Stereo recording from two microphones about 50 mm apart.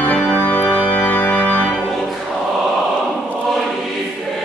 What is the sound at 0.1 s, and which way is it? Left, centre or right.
Music, left.